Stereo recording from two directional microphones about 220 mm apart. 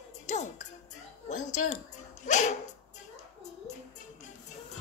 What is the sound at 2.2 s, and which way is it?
Dog, 35° left (ahead or behind).